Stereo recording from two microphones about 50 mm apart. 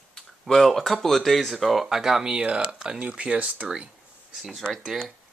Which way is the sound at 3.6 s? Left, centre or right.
Centre.